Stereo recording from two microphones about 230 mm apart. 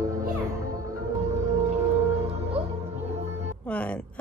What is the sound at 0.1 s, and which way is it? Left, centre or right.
Music, right.